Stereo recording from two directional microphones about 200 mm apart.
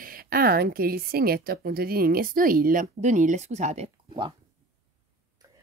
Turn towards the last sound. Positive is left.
turn(degrees=-30)  # may be behind; listen again after turning